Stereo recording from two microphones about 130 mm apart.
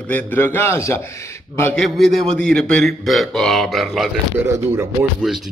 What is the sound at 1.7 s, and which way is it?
A man's voice, 5° left (ahead or behind).